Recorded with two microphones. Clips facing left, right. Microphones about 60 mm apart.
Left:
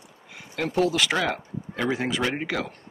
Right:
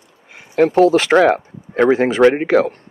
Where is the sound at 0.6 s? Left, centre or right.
Right.